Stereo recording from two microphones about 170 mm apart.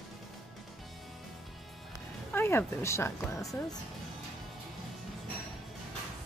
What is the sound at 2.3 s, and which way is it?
Speech, 15° left (ahead or behind).